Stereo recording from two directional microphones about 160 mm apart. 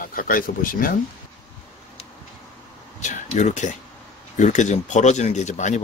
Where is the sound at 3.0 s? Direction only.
50° left (ahead or behind).